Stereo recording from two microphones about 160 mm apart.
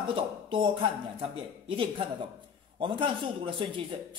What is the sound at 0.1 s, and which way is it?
Speech, 30° right (ahead or behind).